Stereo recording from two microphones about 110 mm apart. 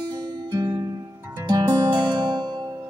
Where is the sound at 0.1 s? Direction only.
40° right (ahead or behind).